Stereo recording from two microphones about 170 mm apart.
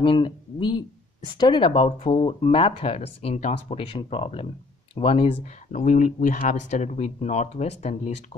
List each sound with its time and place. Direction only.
0.0 s speech: 30° left (ahead or behind)
5.7 s speech: 45° left (ahead or behind)